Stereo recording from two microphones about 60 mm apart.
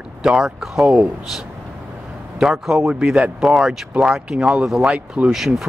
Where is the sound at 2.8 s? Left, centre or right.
Centre.